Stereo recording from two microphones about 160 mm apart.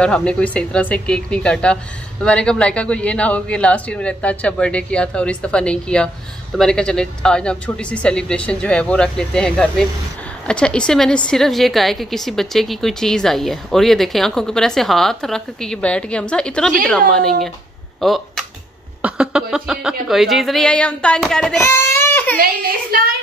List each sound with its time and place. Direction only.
0.0 s a woman's voice: 5° left (ahead or behind)
21.5 s baby cry: 15° left (ahead or behind)
22.4 s a child's voice: 65° right (ahead or behind)